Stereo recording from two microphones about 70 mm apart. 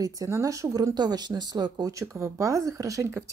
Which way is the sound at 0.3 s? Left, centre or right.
Right.